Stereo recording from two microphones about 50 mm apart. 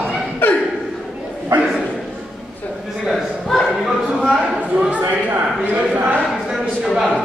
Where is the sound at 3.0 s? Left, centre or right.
Centre.